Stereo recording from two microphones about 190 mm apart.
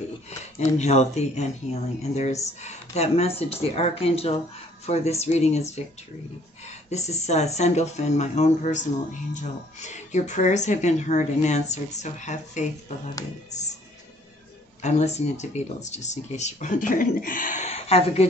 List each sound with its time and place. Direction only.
0.3 s speech: 35° left (ahead or behind)
14.8 s speech: 35° left (ahead or behind)